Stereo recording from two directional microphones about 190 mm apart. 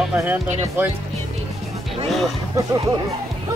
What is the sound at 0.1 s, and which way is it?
Speech, 10° right (ahead or behind).